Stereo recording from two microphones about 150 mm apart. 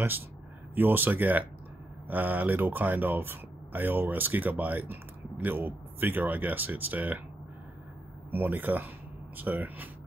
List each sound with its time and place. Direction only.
0.7 s speech: 10° right (ahead or behind)
8.3 s speech: 10° right (ahead or behind)